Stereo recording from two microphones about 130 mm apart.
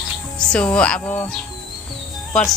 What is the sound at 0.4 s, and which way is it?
Speech, 5° left (ahead or behind).